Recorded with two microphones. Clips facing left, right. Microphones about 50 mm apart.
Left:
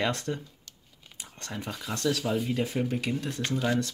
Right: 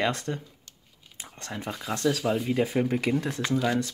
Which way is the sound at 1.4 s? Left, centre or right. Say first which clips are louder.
Right 1 dB; centre.